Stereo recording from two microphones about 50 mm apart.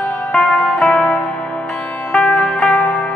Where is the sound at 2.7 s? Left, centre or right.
Left.